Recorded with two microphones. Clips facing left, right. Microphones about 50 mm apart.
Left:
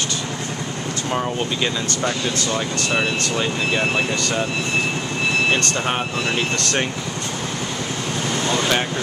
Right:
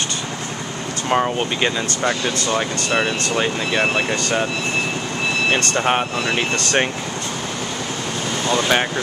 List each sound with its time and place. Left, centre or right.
1.1 s speech: right
5.5 s speech: right
8.5 s air conditioning: centre